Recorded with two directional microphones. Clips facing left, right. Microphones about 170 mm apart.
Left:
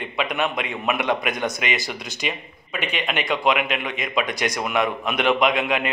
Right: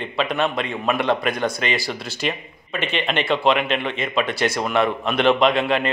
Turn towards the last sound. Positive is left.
turn(degrees=10)  # may be behind; listen again after turning